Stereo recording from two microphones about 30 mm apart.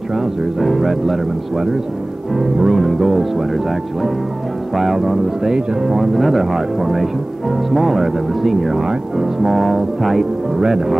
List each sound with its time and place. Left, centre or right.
0.1 s speech: centre
2.3 s music: right
2.7 s speech: centre
8.7 s speech: centre
9.5 s speech: centre
10.6 s speech: centre